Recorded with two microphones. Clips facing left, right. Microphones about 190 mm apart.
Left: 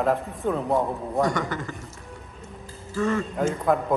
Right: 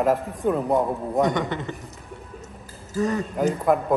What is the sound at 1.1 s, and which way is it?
Speech, 20° right (ahead or behind).